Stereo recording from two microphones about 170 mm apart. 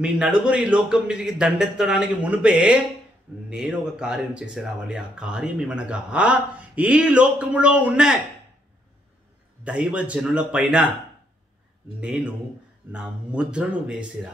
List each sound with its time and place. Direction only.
0.0 s speech: 5° right (ahead or behind)
9.7 s speech: 5° right (ahead or behind)
12.0 s speech: 5° right (ahead or behind)